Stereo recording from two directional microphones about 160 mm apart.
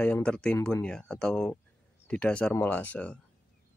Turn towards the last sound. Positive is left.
turn(degrees=10)  # may be behind; listen again after turning